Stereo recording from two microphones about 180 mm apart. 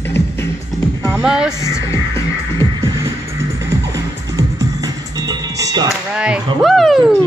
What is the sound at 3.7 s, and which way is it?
Music, 20° right (ahead or behind).